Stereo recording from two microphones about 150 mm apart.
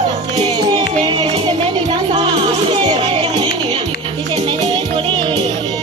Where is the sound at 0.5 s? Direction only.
30° right (ahead or behind).